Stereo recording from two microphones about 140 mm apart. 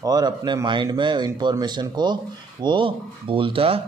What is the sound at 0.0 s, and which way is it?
Speech, 25° right (ahead or behind).